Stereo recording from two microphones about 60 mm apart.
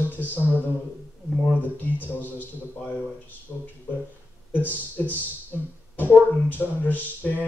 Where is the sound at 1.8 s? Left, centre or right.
Left.